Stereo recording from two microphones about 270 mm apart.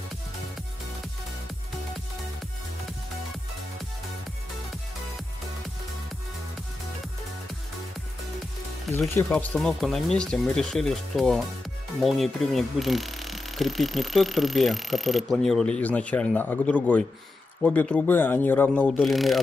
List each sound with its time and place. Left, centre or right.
8.8 s speech: centre